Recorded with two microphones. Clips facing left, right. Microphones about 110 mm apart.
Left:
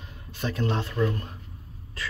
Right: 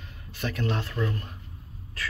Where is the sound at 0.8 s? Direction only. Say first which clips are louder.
Left 4 dB; 15° left (ahead or behind).